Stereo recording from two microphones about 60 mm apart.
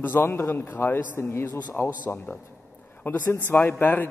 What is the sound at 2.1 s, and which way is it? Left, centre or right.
A man's voice, left.